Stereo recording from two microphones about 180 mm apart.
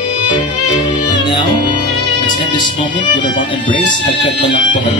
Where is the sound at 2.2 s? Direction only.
25° left (ahead or behind).